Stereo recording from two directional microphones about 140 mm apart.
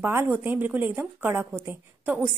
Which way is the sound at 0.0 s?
15° right (ahead or behind).